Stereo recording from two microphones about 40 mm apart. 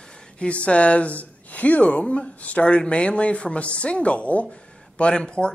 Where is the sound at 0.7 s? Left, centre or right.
Left.